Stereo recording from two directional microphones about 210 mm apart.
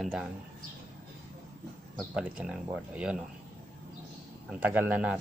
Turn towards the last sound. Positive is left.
turn(degrees=-5)  # may be behind; listen again after turning